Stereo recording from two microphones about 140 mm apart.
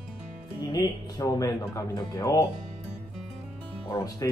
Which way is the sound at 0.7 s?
30° left (ahead or behind).